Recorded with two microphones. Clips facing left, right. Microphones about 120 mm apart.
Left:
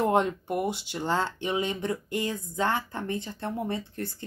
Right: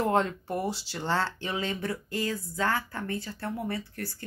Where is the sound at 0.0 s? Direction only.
20° left (ahead or behind).